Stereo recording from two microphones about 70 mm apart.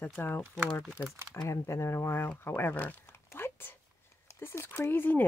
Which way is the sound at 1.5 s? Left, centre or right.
Left.